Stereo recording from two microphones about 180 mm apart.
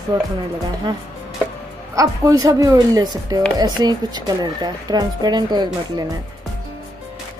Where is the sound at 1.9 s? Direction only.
20° right (ahead or behind).